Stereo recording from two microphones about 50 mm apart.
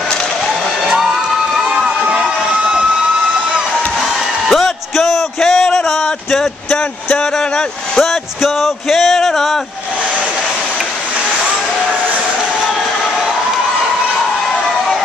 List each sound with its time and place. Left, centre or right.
0.8 s music: centre
1.5 s crowd: centre
4.5 s a sound: centre
7.3 s vehicle: centre
8.0 s speech: centre